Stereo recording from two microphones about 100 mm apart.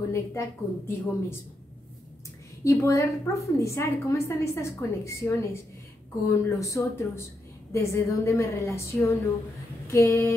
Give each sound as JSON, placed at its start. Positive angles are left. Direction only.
{"t": 0.1, "sound": "a woman's voice", "side_deg": 25}
{"t": 2.6, "sound": "a woman's voice", "side_deg": 30}